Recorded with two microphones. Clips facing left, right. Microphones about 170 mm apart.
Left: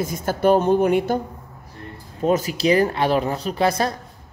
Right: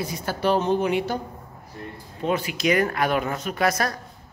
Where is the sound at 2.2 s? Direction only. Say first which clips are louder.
Left 4 dB; 40° left (ahead or behind).